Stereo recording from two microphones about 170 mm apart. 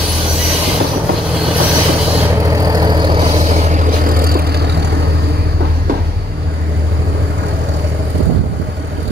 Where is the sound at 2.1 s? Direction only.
15° right (ahead or behind); by 4.8 s 75° right (ahead or behind).